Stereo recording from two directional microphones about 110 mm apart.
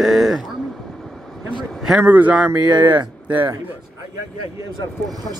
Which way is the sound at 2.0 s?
15° right (ahead or behind).